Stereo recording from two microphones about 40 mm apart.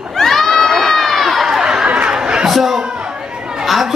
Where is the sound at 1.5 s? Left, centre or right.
Centre.